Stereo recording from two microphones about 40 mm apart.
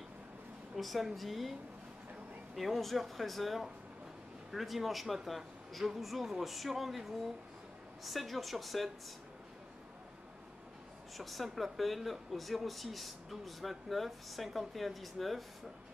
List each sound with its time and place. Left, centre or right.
0.7 s speech: centre
11.1 s speech: centre